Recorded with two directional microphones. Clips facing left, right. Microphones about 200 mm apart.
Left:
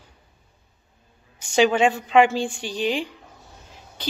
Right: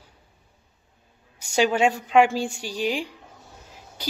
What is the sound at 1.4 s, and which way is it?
Speech, 10° right (ahead or behind).